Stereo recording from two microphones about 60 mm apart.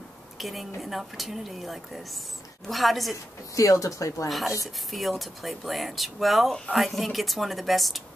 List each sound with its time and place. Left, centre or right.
0.4 s a woman's voice: centre
3.5 s speech: left
4.9 s speech: centre